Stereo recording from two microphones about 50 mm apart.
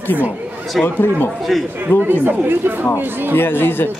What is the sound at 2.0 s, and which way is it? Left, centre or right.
Speech, right.